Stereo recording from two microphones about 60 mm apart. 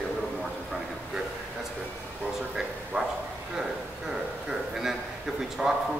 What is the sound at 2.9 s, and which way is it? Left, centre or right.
Bow-wow, centre.